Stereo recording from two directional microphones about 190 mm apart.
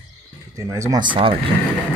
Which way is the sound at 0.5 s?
15° right (ahead or behind).